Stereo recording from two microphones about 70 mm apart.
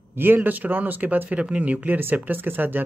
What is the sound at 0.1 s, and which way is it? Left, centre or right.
Speech, right.